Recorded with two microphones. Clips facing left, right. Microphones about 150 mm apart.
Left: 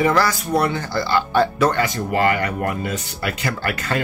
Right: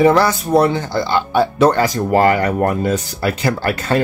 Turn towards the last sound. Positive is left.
turn(degrees=-30)  # may be behind; listen again after turning